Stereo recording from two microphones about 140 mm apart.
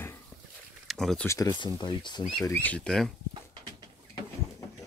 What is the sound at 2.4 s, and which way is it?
Speech, 15° left (ahead or behind).